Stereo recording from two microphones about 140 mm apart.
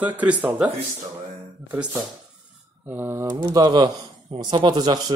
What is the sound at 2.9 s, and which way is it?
Speech, 15° right (ahead or behind).